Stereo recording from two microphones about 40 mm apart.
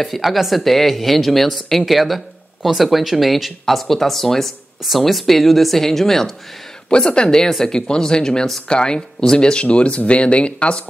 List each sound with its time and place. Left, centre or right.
0.0 s a woman's voice: centre
6.9 s speech: left
7.4 s speech: centre
8.6 s speech: left